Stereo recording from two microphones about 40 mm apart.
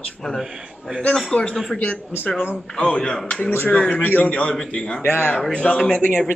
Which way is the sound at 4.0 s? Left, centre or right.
Left.